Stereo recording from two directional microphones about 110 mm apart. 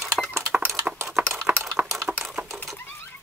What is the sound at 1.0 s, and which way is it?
Typing, 20° right (ahead or behind).